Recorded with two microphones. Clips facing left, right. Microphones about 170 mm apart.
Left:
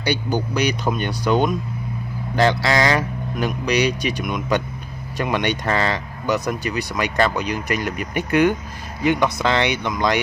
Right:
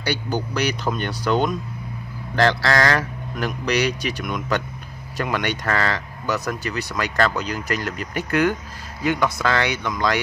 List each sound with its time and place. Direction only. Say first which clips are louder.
0.0 s speech: left 3 dB; 15° left (ahead or behind)